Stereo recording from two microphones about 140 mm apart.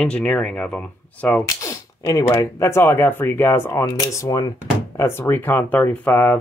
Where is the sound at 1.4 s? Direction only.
20° left (ahead or behind).